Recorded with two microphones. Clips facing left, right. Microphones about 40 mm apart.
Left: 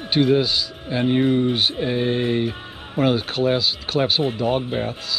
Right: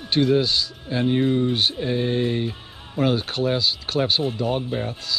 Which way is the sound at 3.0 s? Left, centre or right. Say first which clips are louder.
Left 2 dB; centre.